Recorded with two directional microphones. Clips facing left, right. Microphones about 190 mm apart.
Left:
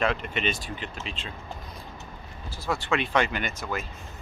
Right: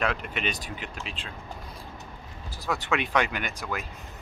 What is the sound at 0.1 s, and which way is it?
Speech, 5° right (ahead or behind).